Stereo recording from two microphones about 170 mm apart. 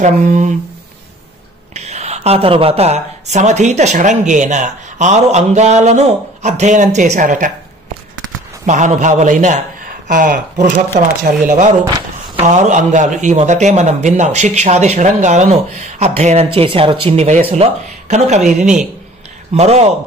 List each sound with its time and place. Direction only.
0.0 s speech: 45° right (ahead or behind)
1.7 s speech: 40° right (ahead or behind)
8.6 s a man's voice: 45° right (ahead or behind)